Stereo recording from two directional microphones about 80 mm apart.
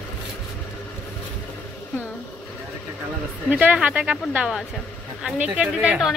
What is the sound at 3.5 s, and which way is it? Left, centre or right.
Speech, centre.